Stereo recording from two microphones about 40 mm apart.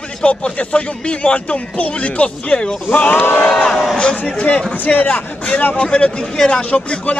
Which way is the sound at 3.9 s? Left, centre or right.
Left.